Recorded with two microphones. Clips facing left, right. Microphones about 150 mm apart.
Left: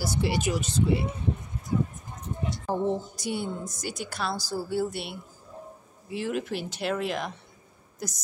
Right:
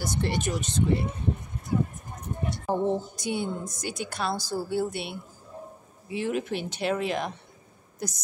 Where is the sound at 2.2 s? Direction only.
60° right (ahead or behind).